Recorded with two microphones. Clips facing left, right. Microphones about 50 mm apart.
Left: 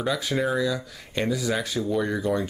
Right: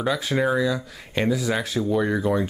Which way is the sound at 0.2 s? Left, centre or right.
Centre.